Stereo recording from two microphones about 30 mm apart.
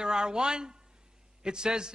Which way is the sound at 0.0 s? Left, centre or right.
Right.